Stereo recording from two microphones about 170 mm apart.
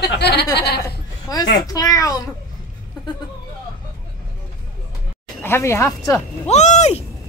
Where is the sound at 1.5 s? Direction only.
20° left (ahead or behind).